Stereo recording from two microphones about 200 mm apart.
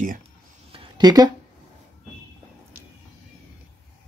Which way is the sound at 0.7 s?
25° right (ahead or behind).